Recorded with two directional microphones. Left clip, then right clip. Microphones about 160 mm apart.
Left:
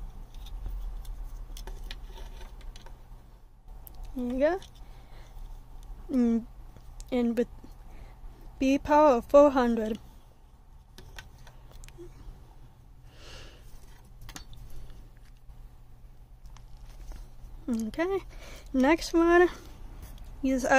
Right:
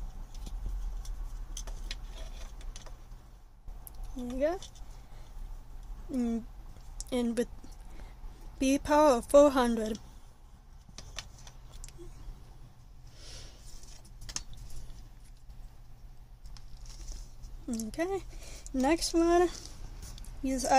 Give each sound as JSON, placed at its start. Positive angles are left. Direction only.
{"t": 6.1, "sound": "speech", "side_deg": 40}
{"t": 7.1, "sound": "a woman's voice", "side_deg": 15}
{"t": 8.5, "sound": "a woman's voice", "side_deg": 15}
{"t": 13.2, "sound": "a sound", "side_deg": 45}
{"t": 17.6, "sound": "speech", "side_deg": 30}